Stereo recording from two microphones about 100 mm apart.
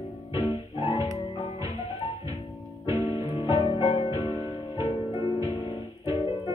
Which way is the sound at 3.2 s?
50° left (ahead or behind).